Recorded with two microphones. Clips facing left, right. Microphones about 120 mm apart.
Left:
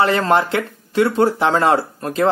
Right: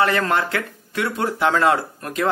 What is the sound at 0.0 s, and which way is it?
Speech, 25° left (ahead or behind).